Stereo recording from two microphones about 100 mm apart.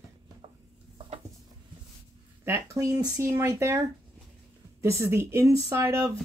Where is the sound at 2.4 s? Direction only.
30° right (ahead or behind).